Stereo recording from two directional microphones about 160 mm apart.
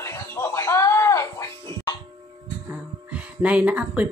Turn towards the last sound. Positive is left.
turn(degrees=-10)  # may be behind; listen again after turning